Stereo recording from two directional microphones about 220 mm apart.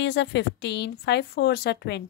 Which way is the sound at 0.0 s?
55° left (ahead or behind).